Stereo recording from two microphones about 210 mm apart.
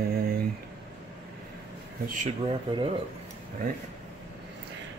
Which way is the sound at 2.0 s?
35° right (ahead or behind).